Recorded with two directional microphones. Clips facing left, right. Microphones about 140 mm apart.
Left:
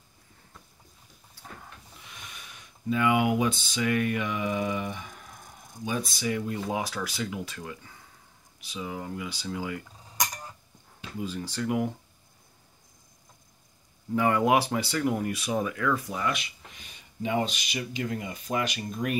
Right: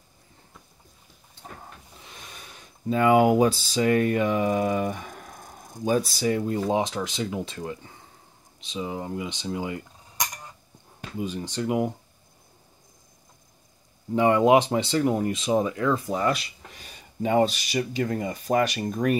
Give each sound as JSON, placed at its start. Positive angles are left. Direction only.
{"t": 2.0, "sound": "speech", "side_deg": -30}
{"t": 6.8, "sound": "speech", "side_deg": -20}
{"t": 11.1, "sound": "speech", "side_deg": -20}
{"t": 14.1, "sound": "speech", "side_deg": -20}